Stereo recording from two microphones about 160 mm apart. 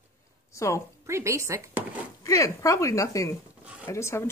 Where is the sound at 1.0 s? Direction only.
20° right (ahead or behind).